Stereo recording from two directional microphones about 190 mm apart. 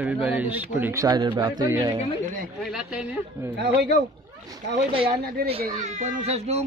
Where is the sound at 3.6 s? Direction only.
60° right (ahead or behind).